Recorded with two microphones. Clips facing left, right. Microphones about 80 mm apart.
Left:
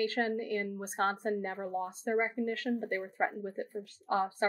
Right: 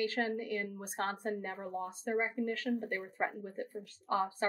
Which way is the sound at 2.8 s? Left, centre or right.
Centre.